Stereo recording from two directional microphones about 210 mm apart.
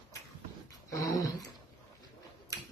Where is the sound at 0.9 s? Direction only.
15° left (ahead or behind).